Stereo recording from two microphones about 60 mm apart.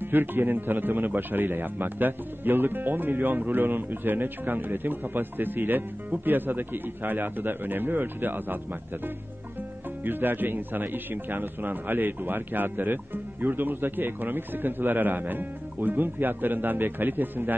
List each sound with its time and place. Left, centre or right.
0.1 s a man's voice: right
10.0 s a man's voice: right